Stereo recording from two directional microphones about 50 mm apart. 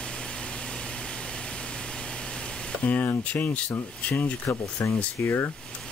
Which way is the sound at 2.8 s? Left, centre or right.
Left.